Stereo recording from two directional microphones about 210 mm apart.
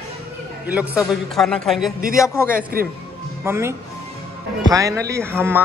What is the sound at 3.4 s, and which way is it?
Speech, 10° right (ahead or behind).